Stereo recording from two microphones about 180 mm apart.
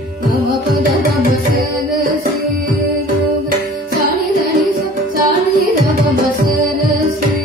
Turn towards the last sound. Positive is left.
turn(degrees=-55)  # may be behind; listen again after turning